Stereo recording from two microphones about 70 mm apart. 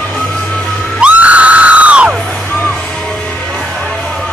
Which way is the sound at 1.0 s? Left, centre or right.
Right.